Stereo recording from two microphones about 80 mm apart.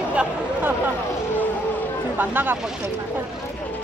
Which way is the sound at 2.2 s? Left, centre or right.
Right.